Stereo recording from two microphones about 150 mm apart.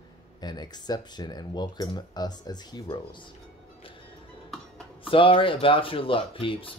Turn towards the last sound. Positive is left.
turn(degrees=35)  # may be behind; listen again after turning